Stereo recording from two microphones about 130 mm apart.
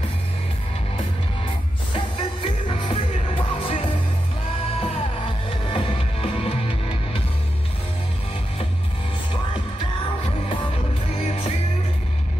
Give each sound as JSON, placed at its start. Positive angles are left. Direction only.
{"t": 2.0, "sound": "music", "side_deg": 45}
{"t": 11.1, "sound": "music", "side_deg": 45}